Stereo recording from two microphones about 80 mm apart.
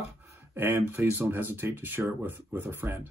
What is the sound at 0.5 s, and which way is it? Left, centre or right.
Speech, right.